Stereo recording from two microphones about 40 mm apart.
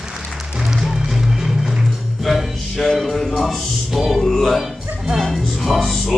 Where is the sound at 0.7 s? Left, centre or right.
Centre.